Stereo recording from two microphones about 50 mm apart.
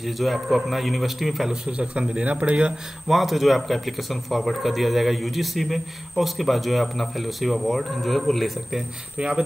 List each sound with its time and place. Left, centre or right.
0.0 s speech: centre
1.7 s speech: right
3.1 s speech: centre